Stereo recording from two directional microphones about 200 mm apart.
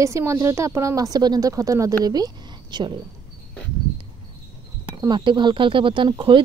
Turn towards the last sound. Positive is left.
turn(degrees=-25)  # may be behind; listen again after turning